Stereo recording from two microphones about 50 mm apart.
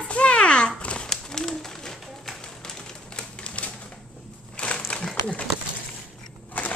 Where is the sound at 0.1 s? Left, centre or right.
Left.